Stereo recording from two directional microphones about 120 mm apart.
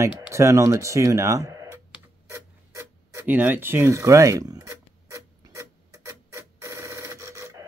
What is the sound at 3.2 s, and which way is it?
Rub, 15° right (ahead or behind).